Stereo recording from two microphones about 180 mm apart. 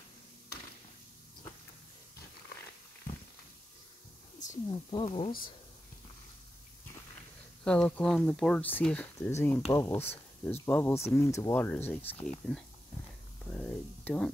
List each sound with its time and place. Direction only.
4.6 s speech: 30° left (ahead or behind)
7.6 s speech: 5° left (ahead or behind)
13.5 s a sound: 5° left (ahead or behind)